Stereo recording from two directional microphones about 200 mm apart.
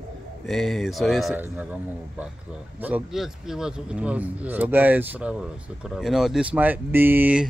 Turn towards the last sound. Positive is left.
turn(degrees=-10)  # may be behind; listen again after turning